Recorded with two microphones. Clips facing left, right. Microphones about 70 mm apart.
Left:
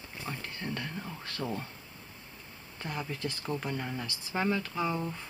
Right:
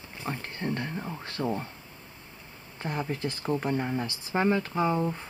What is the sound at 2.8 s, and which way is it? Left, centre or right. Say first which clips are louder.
Speech: right 5 dB; right.